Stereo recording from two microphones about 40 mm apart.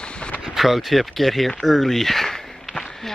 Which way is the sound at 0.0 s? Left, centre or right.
Left.